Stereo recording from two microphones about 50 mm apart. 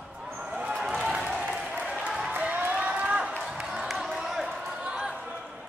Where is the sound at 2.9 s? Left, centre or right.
Centre.